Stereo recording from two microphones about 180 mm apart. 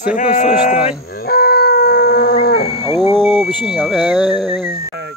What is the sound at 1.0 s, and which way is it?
Livestock, 55° left (ahead or behind).